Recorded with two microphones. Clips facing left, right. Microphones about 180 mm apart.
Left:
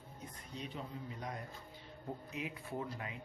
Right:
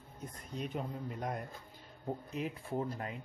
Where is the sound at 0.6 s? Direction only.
55° right (ahead or behind).